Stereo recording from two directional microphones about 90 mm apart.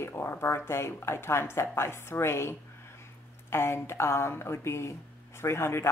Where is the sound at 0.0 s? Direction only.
25° left (ahead or behind).